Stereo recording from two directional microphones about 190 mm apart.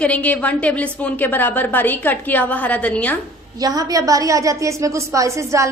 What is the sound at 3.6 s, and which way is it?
A woman's voice, 20° right (ahead or behind).